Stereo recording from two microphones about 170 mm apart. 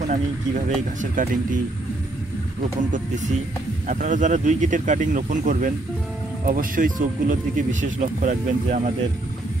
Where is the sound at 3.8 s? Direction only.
45° right (ahead or behind).